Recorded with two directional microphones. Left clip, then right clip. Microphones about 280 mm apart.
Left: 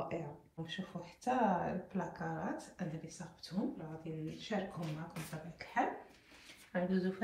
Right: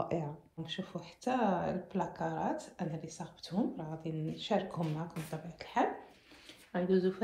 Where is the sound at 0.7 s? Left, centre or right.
Centre.